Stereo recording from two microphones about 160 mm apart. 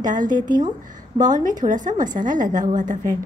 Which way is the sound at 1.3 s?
55° right (ahead or behind).